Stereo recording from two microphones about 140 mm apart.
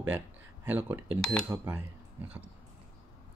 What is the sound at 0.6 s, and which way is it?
Speech, 15° right (ahead or behind).